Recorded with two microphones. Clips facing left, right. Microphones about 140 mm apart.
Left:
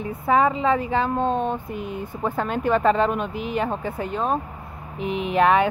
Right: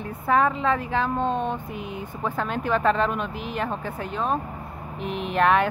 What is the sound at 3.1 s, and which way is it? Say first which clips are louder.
Speech: left 3 dB; 55° left (ahead or behind).